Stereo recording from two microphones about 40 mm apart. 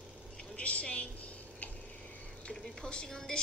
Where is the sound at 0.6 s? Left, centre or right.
Left.